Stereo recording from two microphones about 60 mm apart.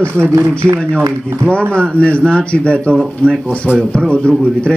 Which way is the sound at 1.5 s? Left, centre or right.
Centre.